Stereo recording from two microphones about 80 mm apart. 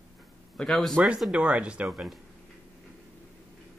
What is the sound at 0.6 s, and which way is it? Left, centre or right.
Speech, centre.